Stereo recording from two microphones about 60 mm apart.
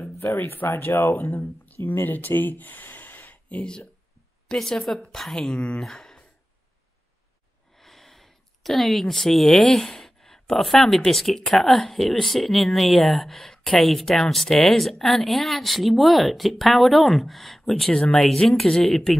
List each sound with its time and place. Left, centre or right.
0.2 s speech: left
4.5 s a woman's voice: centre
7.7 s a sound: centre
11.1 s speech: centre